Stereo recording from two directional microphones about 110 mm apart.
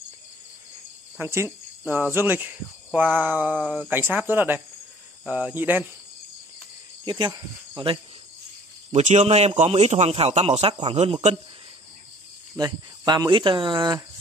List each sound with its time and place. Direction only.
1.1 s speech: 20° right (ahead or behind)
7.1 s speech: 45° right (ahead or behind)
8.9 s a man's voice: 85° right
10.7 s speech: 55° right (ahead or behind)
12.5 s speech: 40° right (ahead or behind)